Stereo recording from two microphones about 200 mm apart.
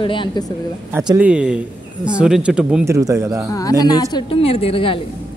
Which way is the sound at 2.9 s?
15° right (ahead or behind).